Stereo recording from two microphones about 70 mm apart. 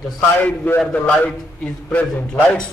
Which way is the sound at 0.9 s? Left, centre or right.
Left.